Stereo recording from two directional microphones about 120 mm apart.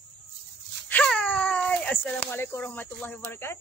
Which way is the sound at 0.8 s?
10° left (ahead or behind).